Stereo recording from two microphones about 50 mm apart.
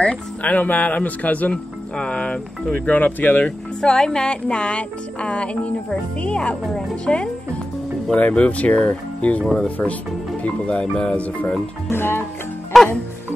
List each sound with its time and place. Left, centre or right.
0.0 s speech: left
2.0 s music: left
2.7 s speech: left
3.8 s music: centre
10.4 s music: left
11.9 s speech: left
12.7 s speech: centre